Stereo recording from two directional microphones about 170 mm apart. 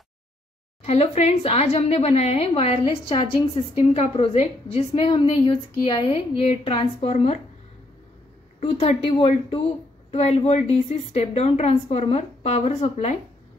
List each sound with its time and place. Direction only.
0.8 s a woman's voice: 40° left (ahead or behind)
8.5 s a woman's voice: 35° left (ahead or behind)